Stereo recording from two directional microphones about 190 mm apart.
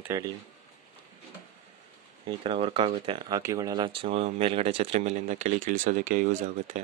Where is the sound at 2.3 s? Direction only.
25° right (ahead or behind).